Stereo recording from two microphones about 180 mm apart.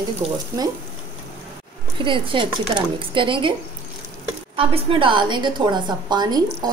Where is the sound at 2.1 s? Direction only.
25° right (ahead or behind).